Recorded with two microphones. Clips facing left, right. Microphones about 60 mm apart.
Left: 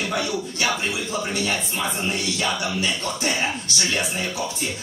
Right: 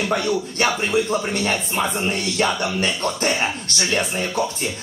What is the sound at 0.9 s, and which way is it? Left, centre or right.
Speech, right.